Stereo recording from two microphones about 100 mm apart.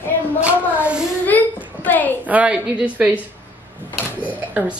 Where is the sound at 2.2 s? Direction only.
15° right (ahead or behind).